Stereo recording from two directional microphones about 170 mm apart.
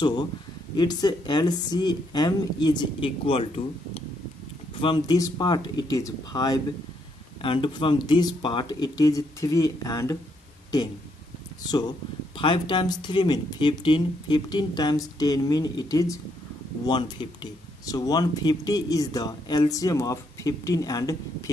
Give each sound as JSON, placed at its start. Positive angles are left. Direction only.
{"t": 0.0, "sound": "speech", "side_deg": 25}
{"t": 11.6, "sound": "speech", "side_deg": 25}